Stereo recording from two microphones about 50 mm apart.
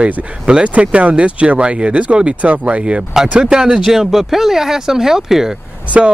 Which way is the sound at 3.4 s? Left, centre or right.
Centre.